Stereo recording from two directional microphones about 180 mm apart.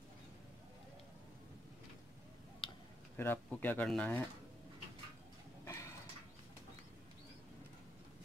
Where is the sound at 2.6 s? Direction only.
30° left (ahead or behind).